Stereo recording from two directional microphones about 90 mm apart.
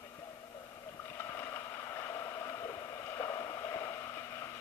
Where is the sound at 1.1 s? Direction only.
25° left (ahead or behind).